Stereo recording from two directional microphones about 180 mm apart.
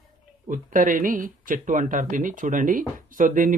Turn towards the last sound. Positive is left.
turn(degrees=-50)  # may be behind; listen again after turning